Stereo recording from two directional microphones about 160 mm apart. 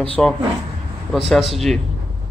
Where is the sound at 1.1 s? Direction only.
Centre (ahead or behind).